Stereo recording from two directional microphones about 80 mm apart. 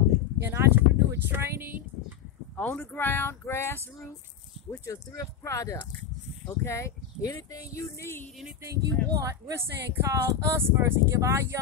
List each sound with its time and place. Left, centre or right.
0.4 s a sound: right
2.5 s speech: left
8.6 s speech: right